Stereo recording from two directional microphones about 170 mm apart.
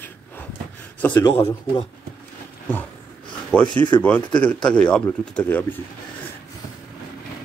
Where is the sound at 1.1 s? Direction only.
25° left (ahead or behind).